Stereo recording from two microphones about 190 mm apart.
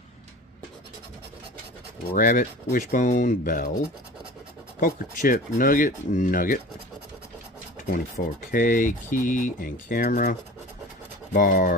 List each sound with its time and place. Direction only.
2.1 s speech: 45° left (ahead or behind)
4.7 s speech: 45° left (ahead or behind)
7.9 s speech: 45° left (ahead or behind)
11.3 s speech: 45° left (ahead or behind)